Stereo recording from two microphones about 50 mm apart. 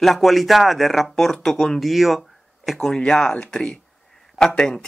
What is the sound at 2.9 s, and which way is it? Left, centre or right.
Speech, centre.